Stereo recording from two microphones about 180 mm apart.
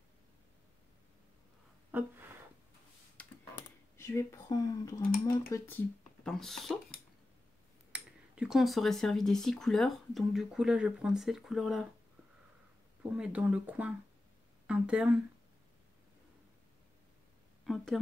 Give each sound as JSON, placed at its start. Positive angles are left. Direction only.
{"t": 1.9, "sound": "a sound", "side_deg": -10}
{"t": 3.2, "sound": "computer keyboard", "side_deg": 10}
{"t": 3.9, "sound": "speech", "side_deg": 15}
{"t": 6.2, "sound": "speech", "side_deg": 0}
{"t": 13.1, "sound": "speech", "side_deg": -5}